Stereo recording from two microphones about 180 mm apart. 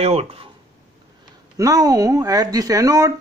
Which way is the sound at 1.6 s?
20° right (ahead or behind).